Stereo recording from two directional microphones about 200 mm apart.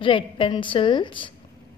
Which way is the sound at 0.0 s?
25° left (ahead or behind).